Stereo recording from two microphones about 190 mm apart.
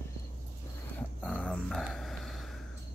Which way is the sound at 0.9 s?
5° left (ahead or behind).